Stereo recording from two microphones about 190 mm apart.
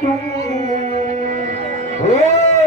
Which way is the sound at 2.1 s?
40° left (ahead or behind).